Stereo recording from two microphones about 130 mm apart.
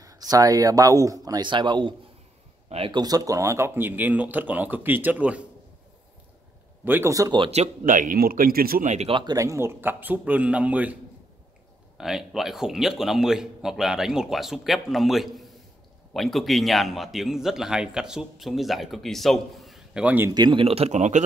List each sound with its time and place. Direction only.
0.0 s speech: 25° right (ahead or behind); by 5.4 s 10° right (ahead or behind)
6.8 s speech: 15° right (ahead or behind)
7.5 s speech: 75° right (ahead or behind)
9.0 s speech: 35° right (ahead or behind); by 11.0 s 10° right (ahead or behind)
12.0 s speech: 5° right (ahead or behind)
20.2 s speech: 35° right (ahead or behind); by 21.2 s 65° right (ahead or behind)